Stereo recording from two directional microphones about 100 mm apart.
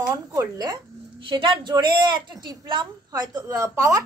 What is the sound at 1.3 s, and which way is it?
A woman's voice, 55° right (ahead or behind).